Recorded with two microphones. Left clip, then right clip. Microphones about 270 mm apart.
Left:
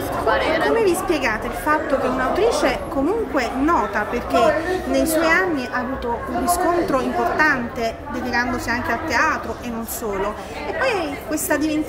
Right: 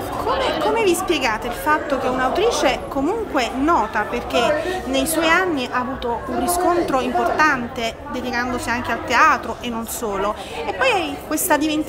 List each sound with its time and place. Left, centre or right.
0.7 s a woman's voice: centre
6.5 s a woman's voice: centre
10.8 s a woman's voice: centre